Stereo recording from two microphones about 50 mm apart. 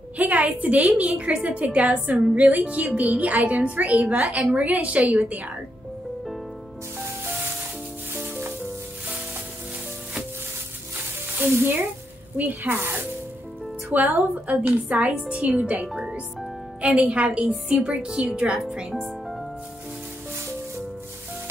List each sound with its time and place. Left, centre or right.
0.2 s a woman's voice: right
8.1 s music: right
11.4 s speech: right
12.6 s speech: right
13.9 s a woman's voice: right